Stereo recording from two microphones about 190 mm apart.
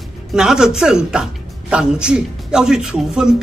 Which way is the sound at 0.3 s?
5° right (ahead or behind).